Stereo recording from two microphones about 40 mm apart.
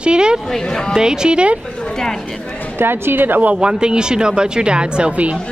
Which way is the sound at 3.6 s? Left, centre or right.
Right.